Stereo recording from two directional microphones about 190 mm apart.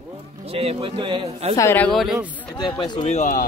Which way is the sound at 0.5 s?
30° right (ahead or behind).